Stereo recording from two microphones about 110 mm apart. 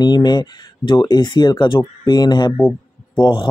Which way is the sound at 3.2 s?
45° left (ahead or behind).